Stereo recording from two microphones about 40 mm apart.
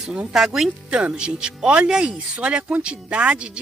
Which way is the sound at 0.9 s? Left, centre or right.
Right.